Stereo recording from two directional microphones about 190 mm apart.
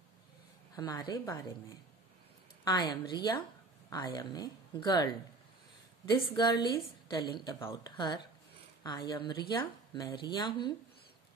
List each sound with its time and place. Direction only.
0.7 s speech: 20° left (ahead or behind)
2.6 s speech: 25° left (ahead or behind)
6.1 s speech: 25° left (ahead or behind)